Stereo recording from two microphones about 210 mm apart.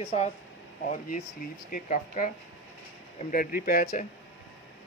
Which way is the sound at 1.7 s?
40° left (ahead or behind).